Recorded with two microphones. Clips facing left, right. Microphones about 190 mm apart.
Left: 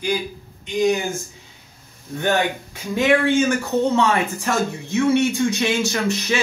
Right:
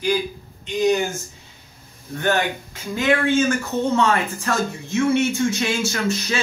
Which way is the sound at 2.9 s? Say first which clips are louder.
Left 2 dB; 15° left (ahead or behind).